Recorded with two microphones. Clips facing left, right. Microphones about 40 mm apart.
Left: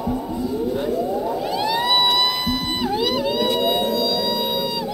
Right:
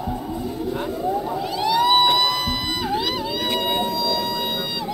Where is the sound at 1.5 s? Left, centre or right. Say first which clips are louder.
Right 4 dB; left.